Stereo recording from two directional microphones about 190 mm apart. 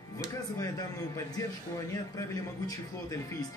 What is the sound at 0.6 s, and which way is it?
A man's voice, 20° left (ahead or behind).